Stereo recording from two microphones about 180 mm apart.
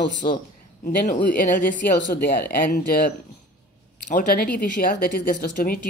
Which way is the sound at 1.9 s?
75° left (ahead or behind).